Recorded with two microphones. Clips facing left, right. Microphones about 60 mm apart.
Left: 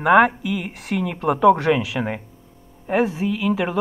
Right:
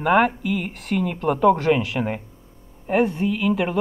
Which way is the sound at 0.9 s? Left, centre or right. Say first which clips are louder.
Even; left.